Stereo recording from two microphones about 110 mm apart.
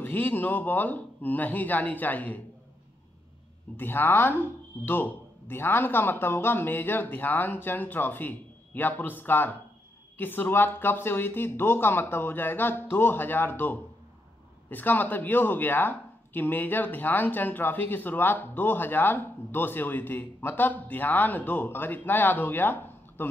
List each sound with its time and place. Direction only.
0.0 s speech: 20° left (ahead or behind)
3.7 s speech: 20° left (ahead or behind)